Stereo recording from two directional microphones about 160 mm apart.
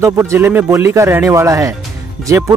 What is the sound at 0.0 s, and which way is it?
A man's voice, 15° right (ahead or behind).